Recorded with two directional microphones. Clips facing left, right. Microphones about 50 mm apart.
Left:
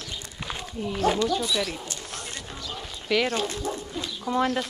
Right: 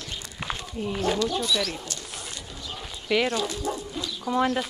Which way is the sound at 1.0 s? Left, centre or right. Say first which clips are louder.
Left 3 dB; left.